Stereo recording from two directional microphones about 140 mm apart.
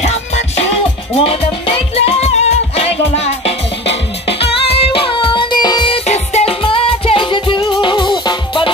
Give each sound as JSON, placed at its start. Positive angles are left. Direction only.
{"t": 0.0, "sound": "music", "side_deg": 50}
{"t": 6.0, "sound": "music", "side_deg": 50}